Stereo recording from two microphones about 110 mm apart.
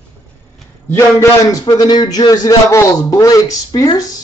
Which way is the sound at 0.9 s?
30° left (ahead or behind).